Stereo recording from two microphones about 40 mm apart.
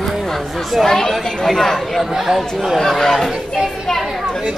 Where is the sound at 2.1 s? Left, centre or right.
Centre.